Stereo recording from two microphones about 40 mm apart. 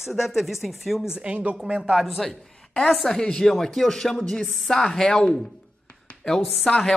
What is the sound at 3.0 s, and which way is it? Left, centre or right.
Speech, centre.